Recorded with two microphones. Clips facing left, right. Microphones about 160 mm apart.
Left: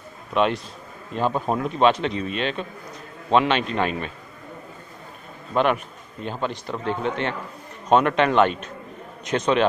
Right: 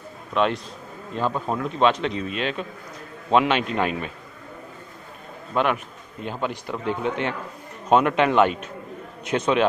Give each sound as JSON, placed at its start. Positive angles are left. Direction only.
{"t": 0.3, "sound": "a man's voice", "side_deg": 10}
{"t": 1.8, "sound": "speech", "side_deg": 5}
{"t": 5.5, "sound": "speech", "side_deg": -5}